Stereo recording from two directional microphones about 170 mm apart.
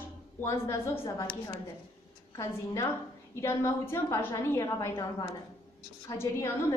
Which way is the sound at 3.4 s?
15° left (ahead or behind).